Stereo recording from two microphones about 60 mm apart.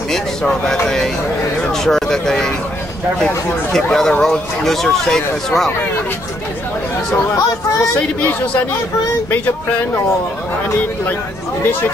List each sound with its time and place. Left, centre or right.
0.1 s speech: centre
3.7 s speech: centre
8.2 s speech: left